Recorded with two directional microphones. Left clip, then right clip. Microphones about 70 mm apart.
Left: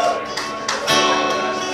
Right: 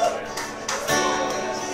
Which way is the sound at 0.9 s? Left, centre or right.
Right.